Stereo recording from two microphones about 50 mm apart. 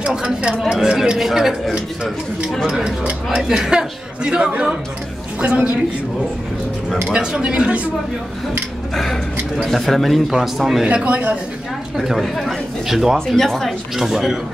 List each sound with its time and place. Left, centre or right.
0.0 s a man's voice: centre
7.1 s speech: right
8.9 s speech: centre
10.9 s speech: right
12.2 s speech: centre
12.8 s a man's voice: centre
13.4 s speech: centre